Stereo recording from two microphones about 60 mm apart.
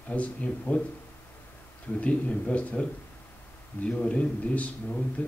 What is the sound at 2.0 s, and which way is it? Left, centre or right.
Speech, left.